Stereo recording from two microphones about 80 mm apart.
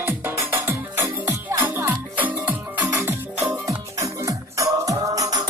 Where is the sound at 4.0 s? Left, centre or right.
Right.